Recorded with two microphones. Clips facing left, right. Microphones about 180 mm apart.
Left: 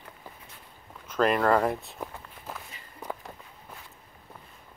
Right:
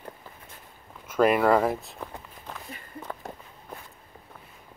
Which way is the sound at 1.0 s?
10° right (ahead or behind).